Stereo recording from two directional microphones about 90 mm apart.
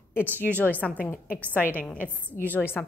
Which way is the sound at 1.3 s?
25° right (ahead or behind).